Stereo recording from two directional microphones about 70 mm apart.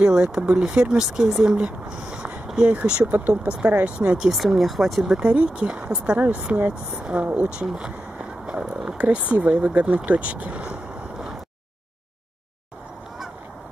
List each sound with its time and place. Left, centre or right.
0.0 s speech: centre
1.4 s a sound: centre
2.6 s speech: centre
4.3 s speech: centre
5.1 s speech: centre
7.5 s a sound: centre
8.6 s speech: centre
8.9 s speech: centre